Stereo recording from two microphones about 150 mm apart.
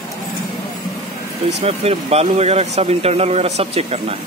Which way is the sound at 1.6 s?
45° right (ahead or behind).